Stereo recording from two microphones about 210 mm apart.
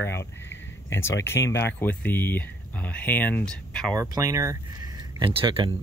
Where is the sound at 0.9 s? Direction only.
10° left (ahead or behind).